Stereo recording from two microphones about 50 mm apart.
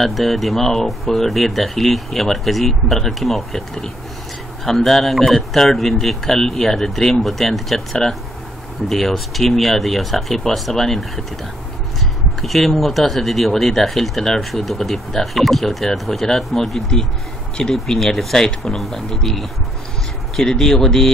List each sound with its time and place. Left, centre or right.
0.0 s speech: centre
12.4 s speech: centre